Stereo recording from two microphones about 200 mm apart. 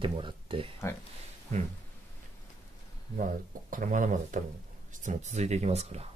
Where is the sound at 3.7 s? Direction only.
40° right (ahead or behind).